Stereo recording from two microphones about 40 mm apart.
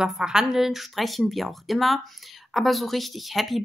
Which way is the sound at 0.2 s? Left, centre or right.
Centre.